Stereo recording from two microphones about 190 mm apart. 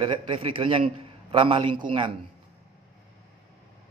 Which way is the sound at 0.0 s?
25° right (ahead or behind).